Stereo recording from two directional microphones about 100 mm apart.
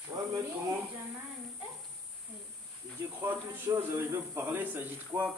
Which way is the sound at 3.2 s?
20° right (ahead or behind).